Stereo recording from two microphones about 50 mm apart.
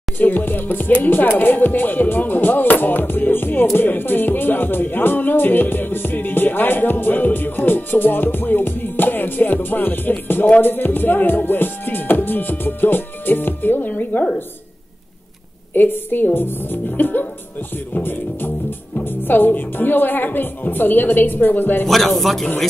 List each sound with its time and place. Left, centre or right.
0.2 s music: left
10.6 s speech: left
15.7 s speech: left
18.9 s music: left
21.8 s a man's voice: centre